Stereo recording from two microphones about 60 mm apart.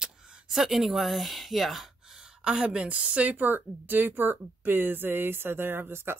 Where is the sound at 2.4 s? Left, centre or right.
Centre.